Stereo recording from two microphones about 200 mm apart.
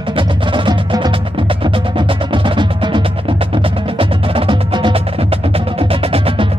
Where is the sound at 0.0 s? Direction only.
25° right (ahead or behind).